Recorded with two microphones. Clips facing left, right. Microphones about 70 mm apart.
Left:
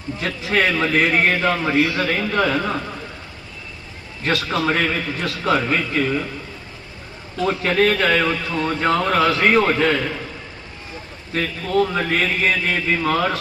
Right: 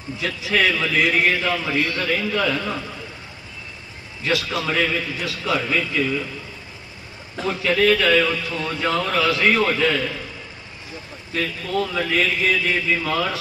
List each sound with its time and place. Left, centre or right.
0.2 s a man's voice: left
1.8 s a man's voice: left
2.0 s a man's voice: left
4.2 s a man's voice: left
7.4 s a man's voice: left
11.3 s a man's voice: left